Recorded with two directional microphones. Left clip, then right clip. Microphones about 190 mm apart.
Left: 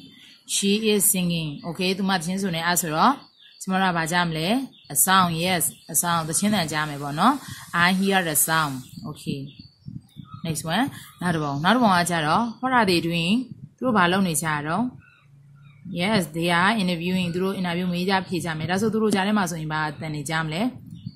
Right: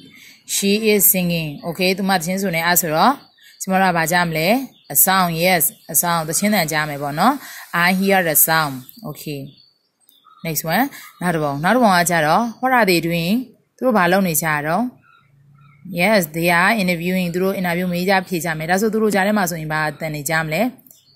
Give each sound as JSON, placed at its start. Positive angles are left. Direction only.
{"t": 0.5, "sound": "a woman's voice", "side_deg": -25}
{"t": 10.4, "sound": "a woman's voice", "side_deg": -30}
{"t": 15.9, "sound": "a woman's voice", "side_deg": -35}